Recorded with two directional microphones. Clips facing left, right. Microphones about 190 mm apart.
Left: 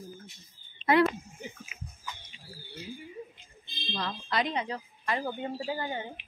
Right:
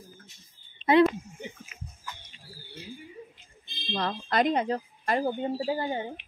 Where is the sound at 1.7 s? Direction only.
5° left (ahead or behind).